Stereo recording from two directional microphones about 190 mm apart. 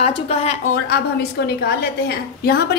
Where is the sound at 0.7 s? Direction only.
55° left (ahead or behind).